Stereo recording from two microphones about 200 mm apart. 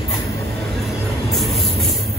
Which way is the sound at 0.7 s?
Centre (ahead or behind).